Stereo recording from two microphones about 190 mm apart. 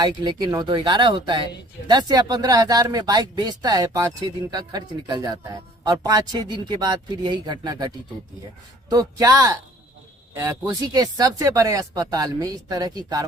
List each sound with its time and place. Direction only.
0.0 s speech: 20° right (ahead or behind)